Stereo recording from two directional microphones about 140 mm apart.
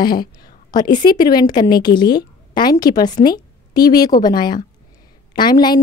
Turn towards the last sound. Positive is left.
turn(degrees=30)  # may be behind; listen again after turning